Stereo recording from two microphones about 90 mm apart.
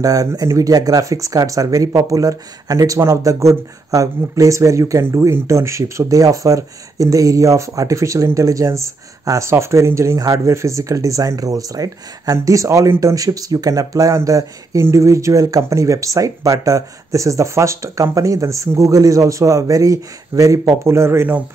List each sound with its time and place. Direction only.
0.0 s speech: 40° right (ahead or behind)